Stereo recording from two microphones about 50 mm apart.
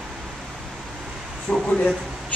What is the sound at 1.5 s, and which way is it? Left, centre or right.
Speech, left.